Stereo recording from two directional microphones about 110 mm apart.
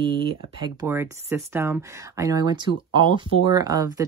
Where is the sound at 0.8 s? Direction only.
25° right (ahead or behind).